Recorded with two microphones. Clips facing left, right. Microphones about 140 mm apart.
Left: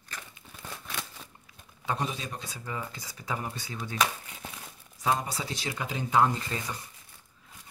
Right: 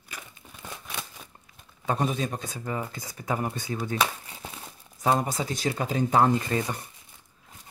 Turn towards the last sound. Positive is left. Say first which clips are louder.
# right 8 dB
turn(degrees=-50)  # may be behind; listen again after turning